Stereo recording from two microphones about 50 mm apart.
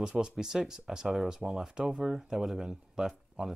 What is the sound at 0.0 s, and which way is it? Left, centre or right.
Speech, centre.